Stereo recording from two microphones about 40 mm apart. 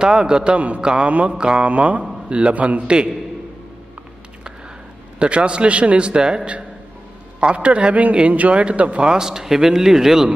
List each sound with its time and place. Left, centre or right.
0.0 s a man's voice: centre
1.7 s a man's voice: right
2.2 s a man's voice: right
2.5 s a man's voice: right
5.2 s a man's voice: right